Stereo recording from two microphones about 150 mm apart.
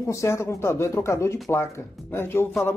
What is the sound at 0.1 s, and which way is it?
Speech, 20° left (ahead or behind).